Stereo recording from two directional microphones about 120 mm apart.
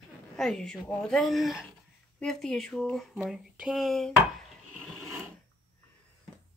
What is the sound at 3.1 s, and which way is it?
Speech, 10° right (ahead or behind).